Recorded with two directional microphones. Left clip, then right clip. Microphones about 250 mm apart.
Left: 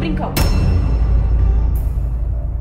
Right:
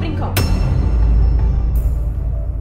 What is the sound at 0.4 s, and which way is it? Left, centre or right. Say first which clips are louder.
Music: right 1 dB; centre.